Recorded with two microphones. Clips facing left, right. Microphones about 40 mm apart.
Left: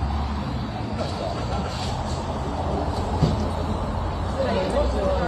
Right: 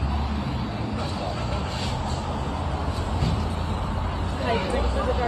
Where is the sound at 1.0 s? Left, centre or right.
Right.